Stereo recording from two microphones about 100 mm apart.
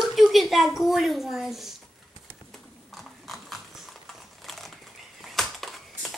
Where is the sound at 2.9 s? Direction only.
Centre (ahead or behind).